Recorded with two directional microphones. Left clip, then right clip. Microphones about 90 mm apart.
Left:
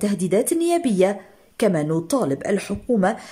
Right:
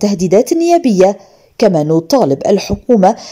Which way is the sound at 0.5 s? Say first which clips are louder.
Right 10 dB; 25° right (ahead or behind).